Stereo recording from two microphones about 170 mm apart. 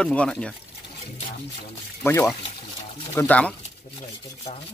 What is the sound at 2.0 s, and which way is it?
Speech, 15° left (ahead or behind).